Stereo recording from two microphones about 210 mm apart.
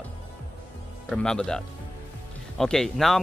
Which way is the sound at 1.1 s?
5° left (ahead or behind).